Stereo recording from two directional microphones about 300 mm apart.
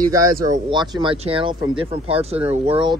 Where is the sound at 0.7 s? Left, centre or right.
Centre.